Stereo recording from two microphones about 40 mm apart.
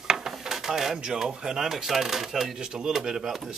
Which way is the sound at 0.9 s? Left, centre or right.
Right.